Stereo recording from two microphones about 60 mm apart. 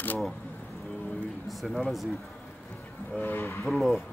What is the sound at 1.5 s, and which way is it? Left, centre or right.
Speech, centre.